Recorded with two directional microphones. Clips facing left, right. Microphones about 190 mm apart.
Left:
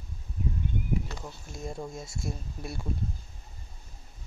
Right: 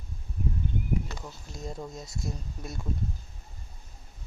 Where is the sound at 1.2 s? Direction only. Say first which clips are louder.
Left 1 dB; 5° left (ahead or behind).